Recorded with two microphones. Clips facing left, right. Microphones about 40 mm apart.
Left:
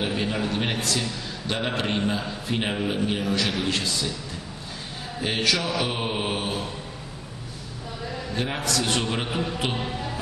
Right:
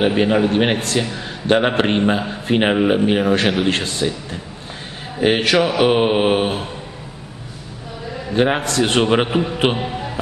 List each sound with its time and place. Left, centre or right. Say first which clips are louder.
0.0 s a man's voice: right 11 dB; right
8.4 s a man's voice: right 11 dB; right
9.8 s speech: right 5 dB; centre